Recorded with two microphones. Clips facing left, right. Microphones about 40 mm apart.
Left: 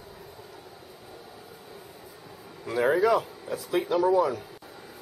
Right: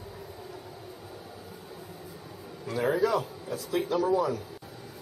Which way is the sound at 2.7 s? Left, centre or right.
Centre.